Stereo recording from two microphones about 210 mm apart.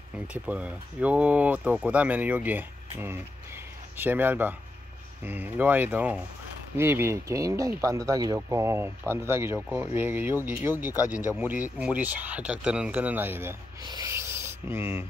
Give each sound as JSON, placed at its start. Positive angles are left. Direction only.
{"t": 0.3, "sound": "speech", "side_deg": -5}
{"t": 11.0, "sound": "speech", "side_deg": 15}
{"t": 11.3, "sound": "speech", "side_deg": -5}